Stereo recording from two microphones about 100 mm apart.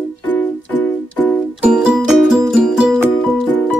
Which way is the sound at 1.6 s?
10° right (ahead or behind).